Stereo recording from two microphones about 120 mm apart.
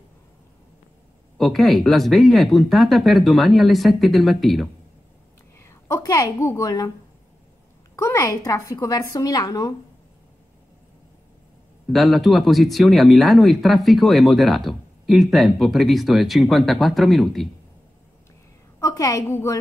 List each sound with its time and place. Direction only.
1.4 s speech: centre (ahead or behind)
5.6 s a woman's voice: 20° left (ahead or behind)
7.9 s a woman's voice: 25° left (ahead or behind)
11.9 s speech: centre (ahead or behind)
18.8 s a woman's voice: 25° left (ahead or behind)